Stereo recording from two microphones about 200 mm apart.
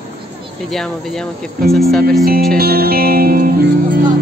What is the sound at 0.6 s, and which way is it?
Speech, centre (ahead or behind).